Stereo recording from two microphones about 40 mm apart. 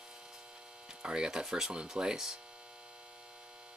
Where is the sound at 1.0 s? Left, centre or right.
Centre.